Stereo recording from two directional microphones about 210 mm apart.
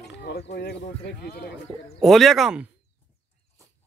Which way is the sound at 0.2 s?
50° left (ahead or behind).